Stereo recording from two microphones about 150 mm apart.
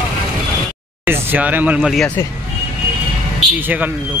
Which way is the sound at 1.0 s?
15° right (ahead or behind).